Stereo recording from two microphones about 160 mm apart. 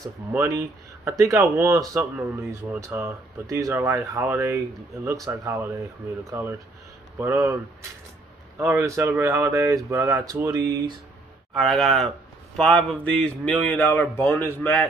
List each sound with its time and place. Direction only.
0.3 s speech: 15° right (ahead or behind)
7.2 s speech: 10° right (ahead or behind)
8.5 s speech: 20° right (ahead or behind)
11.5 s a man's voice: centre (ahead or behind)